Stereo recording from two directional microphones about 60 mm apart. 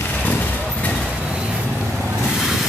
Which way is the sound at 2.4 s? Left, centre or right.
Centre.